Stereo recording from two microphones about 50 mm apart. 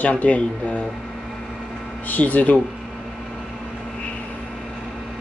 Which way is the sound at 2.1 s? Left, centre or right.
Left.